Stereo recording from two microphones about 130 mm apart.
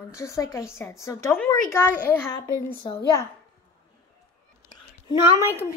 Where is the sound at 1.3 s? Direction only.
10° left (ahead or behind).